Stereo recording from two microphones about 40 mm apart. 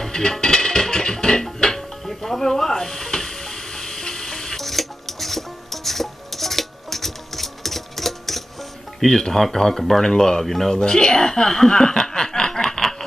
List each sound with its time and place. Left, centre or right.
0.0 s music: centre
2.0 s stir: centre
4.6 s music: centre
9.0 s speech: centre
10.8 s chuckle: left